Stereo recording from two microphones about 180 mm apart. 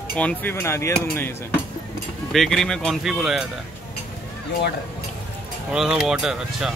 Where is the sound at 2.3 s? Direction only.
Centre (ahead or behind).